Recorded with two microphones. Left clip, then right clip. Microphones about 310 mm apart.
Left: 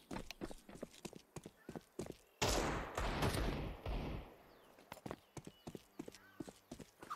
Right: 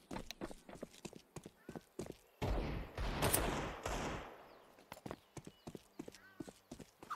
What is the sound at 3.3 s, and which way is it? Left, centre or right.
Fusillade, right.